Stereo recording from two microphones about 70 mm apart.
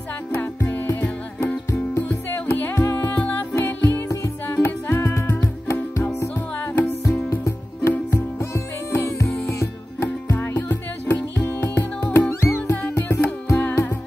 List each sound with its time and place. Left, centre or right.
0.3 s music: left
5.4 s music: left
6.0 s music: left
7.2 s music: left
10.4 s music: left
12.3 s music: left